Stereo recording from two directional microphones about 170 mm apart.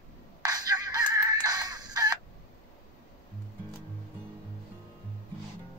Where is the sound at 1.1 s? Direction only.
20° right (ahead or behind).